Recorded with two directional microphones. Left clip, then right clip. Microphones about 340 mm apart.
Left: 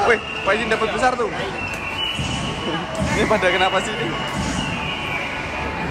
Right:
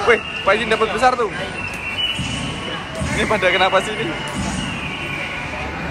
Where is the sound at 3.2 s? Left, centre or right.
Centre.